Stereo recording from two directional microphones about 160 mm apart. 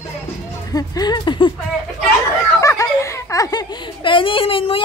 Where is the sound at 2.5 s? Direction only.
20° left (ahead or behind).